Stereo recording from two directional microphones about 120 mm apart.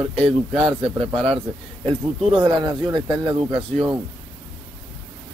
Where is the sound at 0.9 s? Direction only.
50° right (ahead or behind).